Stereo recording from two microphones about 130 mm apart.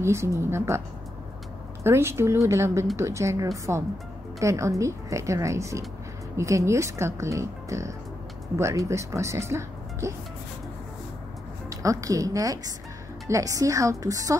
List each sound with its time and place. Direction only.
0.0 s speech: 20° right (ahead or behind)
11.7 s speech: 25° right (ahead or behind)